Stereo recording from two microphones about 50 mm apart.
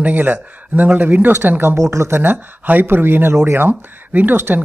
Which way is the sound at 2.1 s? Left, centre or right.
Right.